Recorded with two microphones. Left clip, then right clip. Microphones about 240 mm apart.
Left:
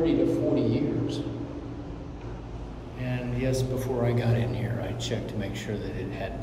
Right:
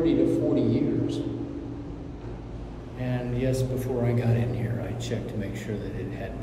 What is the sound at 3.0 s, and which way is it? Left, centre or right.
A man's voice, centre.